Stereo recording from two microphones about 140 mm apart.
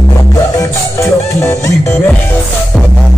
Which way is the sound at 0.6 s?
20° left (ahead or behind).